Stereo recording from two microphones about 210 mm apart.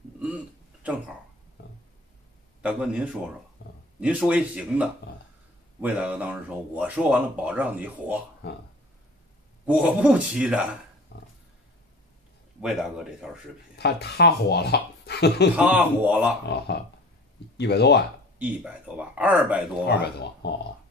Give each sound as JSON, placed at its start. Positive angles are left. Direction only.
{"t": 1.6, "sound": "a sound", "side_deg": 50}
{"t": 2.6, "sound": "speech", "side_deg": -5}
{"t": 8.4, "sound": "speech", "side_deg": 50}
{"t": 9.7, "sound": "speech", "side_deg": -5}
{"t": 11.1, "sound": "pig", "side_deg": 55}
{"t": 12.6, "sound": "speech", "side_deg": -5}
{"t": 13.7, "sound": "speech", "side_deg": 50}
{"t": 15.5, "sound": "speech", "side_deg": -5}
{"t": 16.4, "sound": "speech", "side_deg": 50}
{"t": 18.4, "sound": "speech", "side_deg": -5}
{"t": 19.9, "sound": "speech", "side_deg": 55}